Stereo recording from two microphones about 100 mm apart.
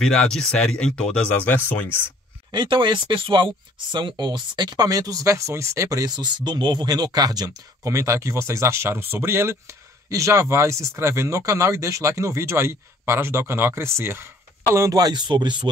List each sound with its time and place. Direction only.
0.0 s speech: 5° left (ahead or behind)
2.5 s speech: 55° right (ahead or behind); by 14.3 s 25° right (ahead or behind)
14.9 s speech: 40° right (ahead or behind)